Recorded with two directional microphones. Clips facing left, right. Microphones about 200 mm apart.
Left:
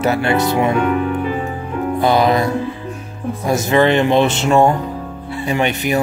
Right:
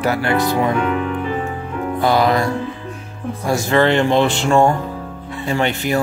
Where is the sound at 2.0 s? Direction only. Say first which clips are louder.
Left 1 dB; 20° left (ahead or behind).